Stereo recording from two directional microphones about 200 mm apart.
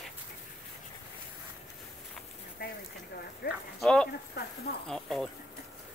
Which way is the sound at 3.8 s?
5° left (ahead or behind).